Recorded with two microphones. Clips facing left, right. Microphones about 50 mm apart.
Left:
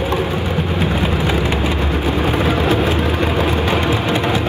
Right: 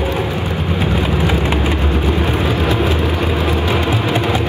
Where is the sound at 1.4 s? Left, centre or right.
Right.